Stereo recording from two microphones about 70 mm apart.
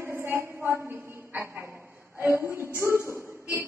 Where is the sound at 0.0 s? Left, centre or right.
Right.